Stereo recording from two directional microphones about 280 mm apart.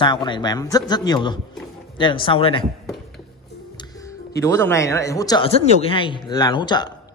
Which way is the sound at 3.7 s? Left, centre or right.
Centre.